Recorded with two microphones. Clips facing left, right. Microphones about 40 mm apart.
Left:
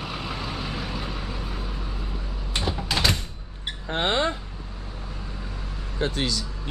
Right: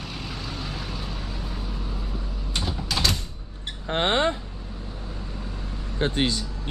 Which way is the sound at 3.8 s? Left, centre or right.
Right.